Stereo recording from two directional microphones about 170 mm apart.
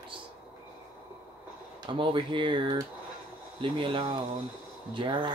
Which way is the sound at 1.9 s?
30° right (ahead or behind).